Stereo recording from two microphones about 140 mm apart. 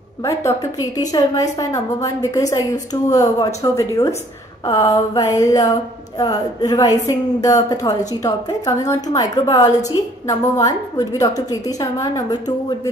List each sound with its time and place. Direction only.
0.2 s a woman's voice: 20° left (ahead or behind)